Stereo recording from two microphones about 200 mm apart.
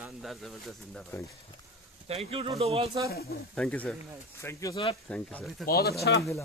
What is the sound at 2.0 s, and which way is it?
Speech, 30° right (ahead or behind).